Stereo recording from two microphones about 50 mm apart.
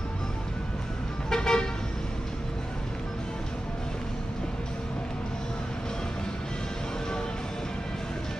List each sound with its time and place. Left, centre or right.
1.3 s vehicle: centre